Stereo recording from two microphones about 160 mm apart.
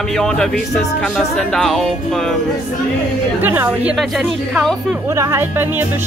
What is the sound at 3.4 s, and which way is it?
Speech, 15° right (ahead or behind).